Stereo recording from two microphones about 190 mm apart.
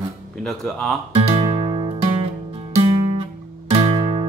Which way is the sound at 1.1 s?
25° right (ahead or behind).